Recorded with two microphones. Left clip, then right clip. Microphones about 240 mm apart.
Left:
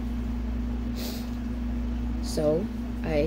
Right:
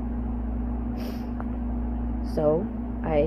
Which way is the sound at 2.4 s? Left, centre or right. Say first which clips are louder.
Right 2 dB; centre.